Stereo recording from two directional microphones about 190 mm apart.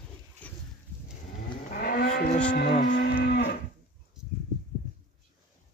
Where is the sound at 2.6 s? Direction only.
60° left (ahead or behind).